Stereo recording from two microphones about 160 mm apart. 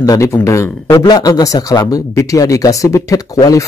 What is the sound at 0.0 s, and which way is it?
Speech, 20° left (ahead or behind).